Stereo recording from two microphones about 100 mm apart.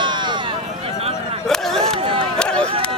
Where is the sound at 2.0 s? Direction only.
60° right (ahead or behind).